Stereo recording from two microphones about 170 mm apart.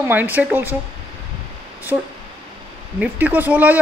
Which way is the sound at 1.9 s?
15° right (ahead or behind).